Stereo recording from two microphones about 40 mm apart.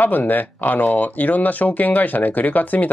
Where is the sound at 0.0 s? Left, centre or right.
Left.